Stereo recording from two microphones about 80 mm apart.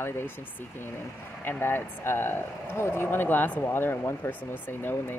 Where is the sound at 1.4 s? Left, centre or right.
Left.